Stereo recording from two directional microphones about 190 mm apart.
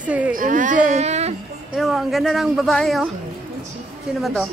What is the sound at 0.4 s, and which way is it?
Baby cry, 45° right (ahead or behind).